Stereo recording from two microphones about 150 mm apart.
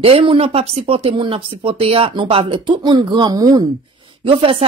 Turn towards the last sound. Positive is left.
turn(degrees=-35)  # may be behind; listen again after turning